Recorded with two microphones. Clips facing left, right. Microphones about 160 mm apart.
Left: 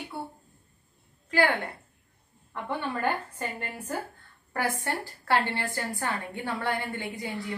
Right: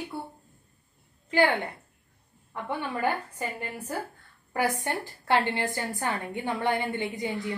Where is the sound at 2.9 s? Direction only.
10° right (ahead or behind).